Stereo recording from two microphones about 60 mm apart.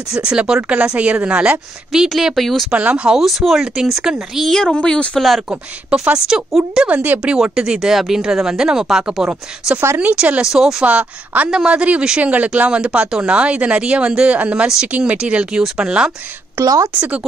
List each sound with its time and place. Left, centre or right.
0.1 s speech: centre
0.6 s speech: right
2.0 s speech: centre
2.7 s speech: right
3.1 s speech: centre
4.7 s speech: centre
6.1 s speech: centre
9.9 s speech: right
10.4 s speech: centre
10.8 s speech: right
16.6 s a woman's voice: right